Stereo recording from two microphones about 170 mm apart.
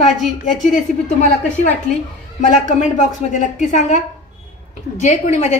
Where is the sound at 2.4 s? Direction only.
45° left (ahead or behind).